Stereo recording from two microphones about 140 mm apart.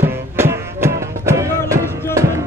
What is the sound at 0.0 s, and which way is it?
Music, 15° right (ahead or behind).